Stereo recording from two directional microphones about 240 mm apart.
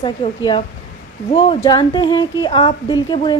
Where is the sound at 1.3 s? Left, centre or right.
Left.